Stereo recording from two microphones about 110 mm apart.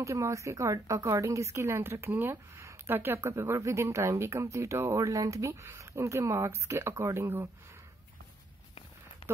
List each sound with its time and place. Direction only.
0.0 s speech: 25° right (ahead or behind)